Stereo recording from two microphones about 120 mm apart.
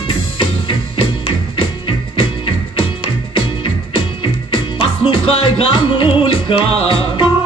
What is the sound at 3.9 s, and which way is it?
Music, 45° left (ahead or behind).